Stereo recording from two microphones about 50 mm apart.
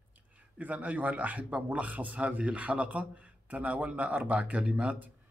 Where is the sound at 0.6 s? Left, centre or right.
Right.